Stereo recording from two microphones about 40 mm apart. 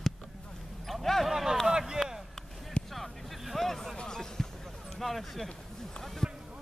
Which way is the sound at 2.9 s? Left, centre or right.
Centre.